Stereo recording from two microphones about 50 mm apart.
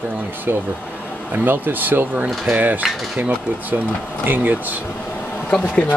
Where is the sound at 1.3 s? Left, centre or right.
Right.